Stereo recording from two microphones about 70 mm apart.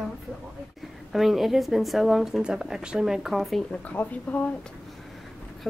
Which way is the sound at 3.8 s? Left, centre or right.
Left.